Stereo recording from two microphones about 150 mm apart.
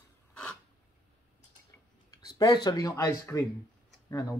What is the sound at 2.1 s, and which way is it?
Speech, 30° left (ahead or behind).